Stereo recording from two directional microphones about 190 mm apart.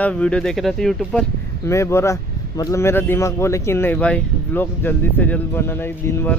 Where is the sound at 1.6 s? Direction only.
15° left (ahead or behind).